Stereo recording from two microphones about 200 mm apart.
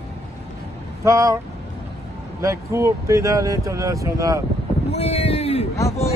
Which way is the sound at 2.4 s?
15° right (ahead or behind).